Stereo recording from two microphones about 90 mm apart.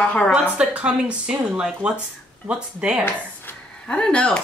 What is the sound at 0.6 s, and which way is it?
A woman's voice, 10° right (ahead or behind).